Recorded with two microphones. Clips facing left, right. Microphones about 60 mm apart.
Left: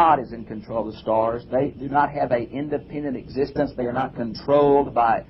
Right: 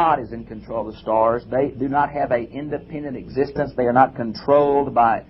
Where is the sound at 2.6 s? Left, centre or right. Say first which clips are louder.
Left 1 dB; centre.